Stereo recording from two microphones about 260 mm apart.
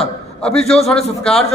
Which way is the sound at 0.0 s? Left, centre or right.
Centre.